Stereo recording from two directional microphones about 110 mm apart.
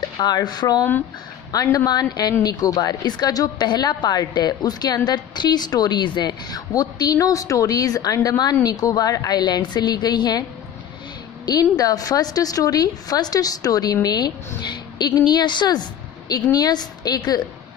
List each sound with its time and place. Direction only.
0.2 s a woman's voice: 40° left (ahead or behind)
11.4 s a woman's voice: 35° left (ahead or behind)